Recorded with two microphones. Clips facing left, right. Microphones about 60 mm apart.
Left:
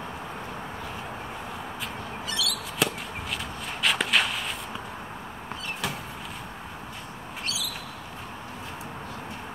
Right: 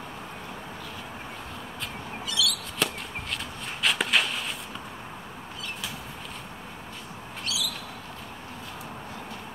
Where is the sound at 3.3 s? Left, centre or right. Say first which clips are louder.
Left 2 dB; centre.